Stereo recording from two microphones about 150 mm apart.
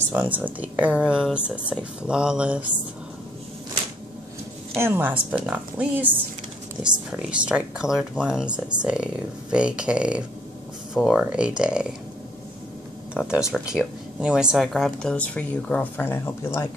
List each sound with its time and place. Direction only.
0.1 s speech: 10° right (ahead or behind)
4.7 s speech: 15° right (ahead or behind)
13.1 s speech: 5° right (ahead or behind); by 16.6 s 15° left (ahead or behind)